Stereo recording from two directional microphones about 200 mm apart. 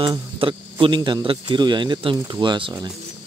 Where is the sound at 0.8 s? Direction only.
25° right (ahead or behind).